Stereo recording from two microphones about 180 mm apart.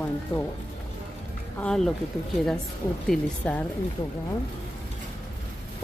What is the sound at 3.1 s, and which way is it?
Speech, 10° left (ahead or behind).